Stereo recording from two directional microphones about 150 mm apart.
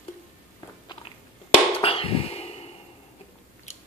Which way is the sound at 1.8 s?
40° left (ahead or behind).